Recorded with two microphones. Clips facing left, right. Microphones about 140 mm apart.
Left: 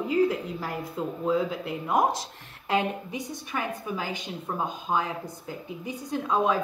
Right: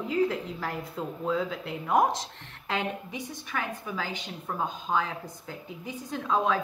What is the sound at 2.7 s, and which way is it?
A woman's voice, 15° left (ahead or behind).